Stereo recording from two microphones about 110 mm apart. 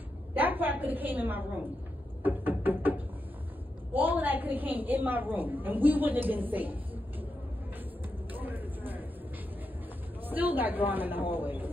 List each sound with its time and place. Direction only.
0.3 s a woman's voice: 15° right (ahead or behind)
2.2 s music: 15° right (ahead or behind)
3.9 s a woman's voice: 15° right (ahead or behind)
8.3 s a sound: 15° right (ahead or behind)
10.2 s a woman's voice: 15° right (ahead or behind)